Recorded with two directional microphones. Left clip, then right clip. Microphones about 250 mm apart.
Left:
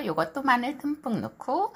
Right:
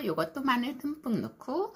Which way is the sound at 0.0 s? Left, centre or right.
Centre.